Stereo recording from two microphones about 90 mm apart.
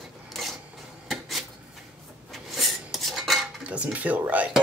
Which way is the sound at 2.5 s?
Centre (ahead or behind).